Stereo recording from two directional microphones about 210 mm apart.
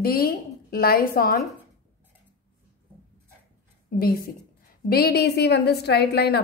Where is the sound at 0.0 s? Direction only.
45° left (ahead or behind).